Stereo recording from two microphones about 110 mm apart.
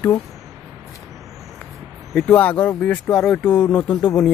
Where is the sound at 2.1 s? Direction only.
10° left (ahead or behind).